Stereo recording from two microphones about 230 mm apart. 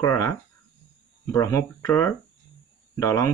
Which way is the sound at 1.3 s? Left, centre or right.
Centre.